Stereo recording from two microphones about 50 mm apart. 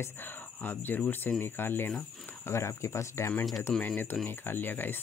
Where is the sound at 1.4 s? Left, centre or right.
Left.